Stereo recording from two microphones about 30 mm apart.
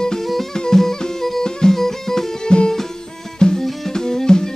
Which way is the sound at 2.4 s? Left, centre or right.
Left.